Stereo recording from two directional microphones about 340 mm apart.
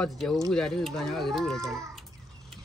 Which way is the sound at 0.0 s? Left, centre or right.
Centre.